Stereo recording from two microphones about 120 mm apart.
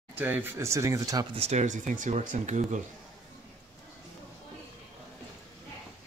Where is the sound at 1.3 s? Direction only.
65° right (ahead or behind); by 2.8 s 90° right.